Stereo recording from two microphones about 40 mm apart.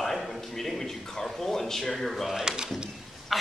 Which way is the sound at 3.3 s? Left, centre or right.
Centre.